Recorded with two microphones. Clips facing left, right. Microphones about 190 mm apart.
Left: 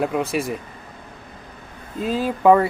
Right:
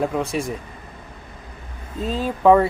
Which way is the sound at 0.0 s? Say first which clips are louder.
Left 1 dB; 5° left (ahead or behind).